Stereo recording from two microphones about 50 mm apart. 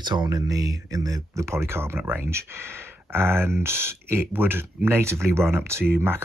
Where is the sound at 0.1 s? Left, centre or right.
Right.